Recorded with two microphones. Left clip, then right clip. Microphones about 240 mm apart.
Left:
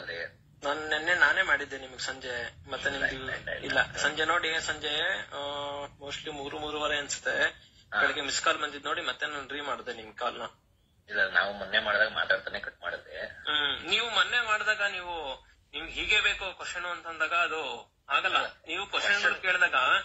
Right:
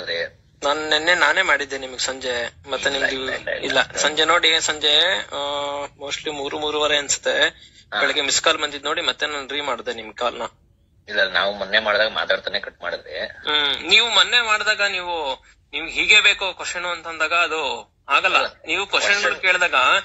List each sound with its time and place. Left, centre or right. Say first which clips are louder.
0.1 s a man's voice: right 14 dB; right